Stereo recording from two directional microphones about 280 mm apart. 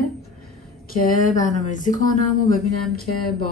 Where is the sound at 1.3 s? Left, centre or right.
Left.